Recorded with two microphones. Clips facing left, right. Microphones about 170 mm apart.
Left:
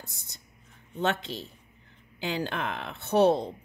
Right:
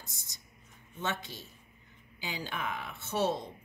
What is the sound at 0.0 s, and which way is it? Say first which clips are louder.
A woman's voice: left 5 dB; 60° left (ahead or behind).